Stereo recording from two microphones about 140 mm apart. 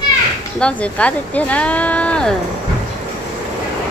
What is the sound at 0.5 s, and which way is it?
A woman's voice, 10° left (ahead or behind).